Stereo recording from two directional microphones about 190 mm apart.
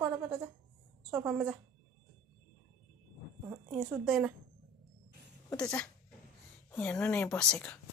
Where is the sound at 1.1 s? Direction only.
10° right (ahead or behind).